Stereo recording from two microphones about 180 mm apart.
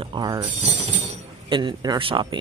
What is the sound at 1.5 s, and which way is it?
Speech, 25° right (ahead or behind).